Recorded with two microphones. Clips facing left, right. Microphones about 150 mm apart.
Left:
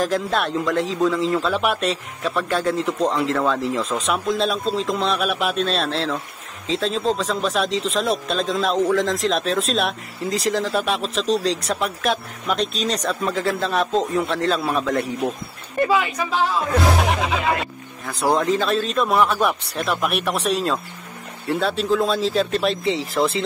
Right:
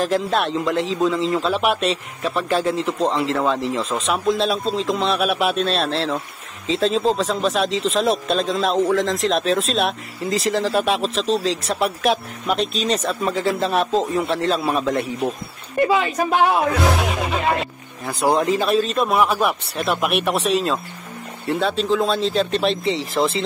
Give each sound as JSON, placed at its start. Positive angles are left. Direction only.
{"t": 0.0, "sound": "speech", "side_deg": 0}
{"t": 16.1, "sound": "speech", "side_deg": -50}
{"t": 18.2, "sound": "speech", "side_deg": -5}